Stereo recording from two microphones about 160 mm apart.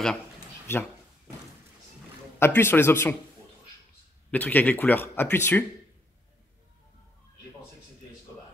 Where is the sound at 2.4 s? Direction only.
15° left (ahead or behind).